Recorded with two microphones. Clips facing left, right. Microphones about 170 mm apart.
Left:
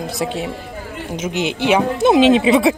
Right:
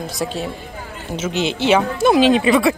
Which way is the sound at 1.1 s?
15° left (ahead or behind).